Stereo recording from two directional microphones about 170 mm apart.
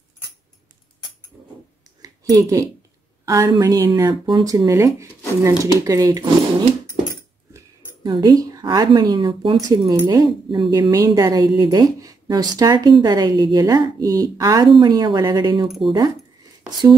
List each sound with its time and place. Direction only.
2.0 s a sound: 20° right (ahead or behind)
3.3 s a woman's voice: 20° right (ahead or behind)
7.5 s a woman's voice: 25° right (ahead or behind)